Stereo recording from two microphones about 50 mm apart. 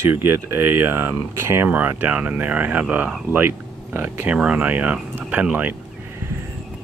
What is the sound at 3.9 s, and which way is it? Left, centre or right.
Speech, right.